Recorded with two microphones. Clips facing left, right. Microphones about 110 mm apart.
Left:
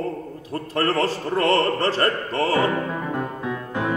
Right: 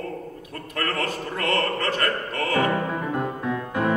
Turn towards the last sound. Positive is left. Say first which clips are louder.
# right 1 dB
turn(degrees=0)  # may be behind; listen again after turning